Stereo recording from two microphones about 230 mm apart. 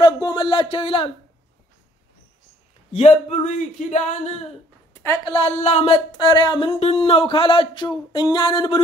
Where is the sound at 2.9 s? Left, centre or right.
Left.